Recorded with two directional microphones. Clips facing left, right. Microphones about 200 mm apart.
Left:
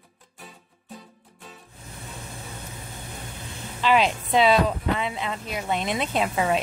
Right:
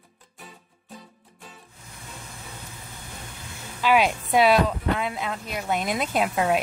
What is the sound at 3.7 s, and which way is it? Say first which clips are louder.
Speech: even; 10° right (ahead or behind).